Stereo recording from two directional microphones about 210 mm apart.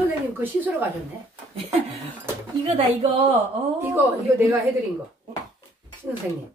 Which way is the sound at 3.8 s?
10° right (ahead or behind).